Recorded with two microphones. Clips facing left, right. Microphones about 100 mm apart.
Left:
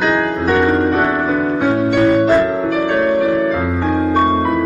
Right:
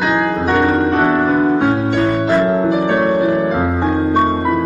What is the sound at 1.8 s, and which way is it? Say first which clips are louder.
Harp: left 3 dB; 10° right (ahead or behind).